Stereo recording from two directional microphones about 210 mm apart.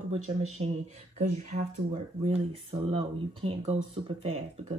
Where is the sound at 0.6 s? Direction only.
30° right (ahead or behind).